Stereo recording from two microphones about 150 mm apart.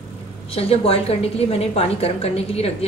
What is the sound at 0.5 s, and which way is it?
A woman's voice, 40° left (ahead or behind).